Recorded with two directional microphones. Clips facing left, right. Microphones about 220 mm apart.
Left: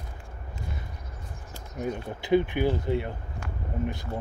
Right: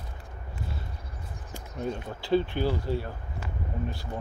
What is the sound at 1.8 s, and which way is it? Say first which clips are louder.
Speech: left 1 dB; 15° left (ahead or behind).